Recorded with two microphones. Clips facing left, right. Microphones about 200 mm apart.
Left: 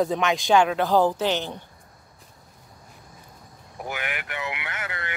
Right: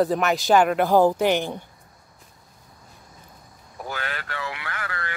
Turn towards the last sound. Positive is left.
turn(degrees=20)  # may be behind; listen again after turning